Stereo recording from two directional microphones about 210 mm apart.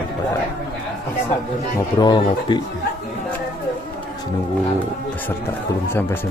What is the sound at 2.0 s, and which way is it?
Speech, 20° left (ahead or behind).